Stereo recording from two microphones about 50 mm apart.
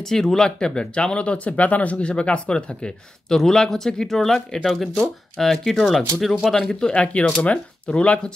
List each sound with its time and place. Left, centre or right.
0.1 s speech: centre; by 8.3 s left